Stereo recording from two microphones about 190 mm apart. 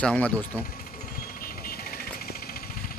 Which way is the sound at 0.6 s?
50° left (ahead or behind).